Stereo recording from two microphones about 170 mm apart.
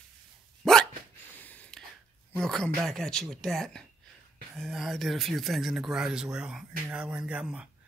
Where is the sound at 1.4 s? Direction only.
10° left (ahead or behind).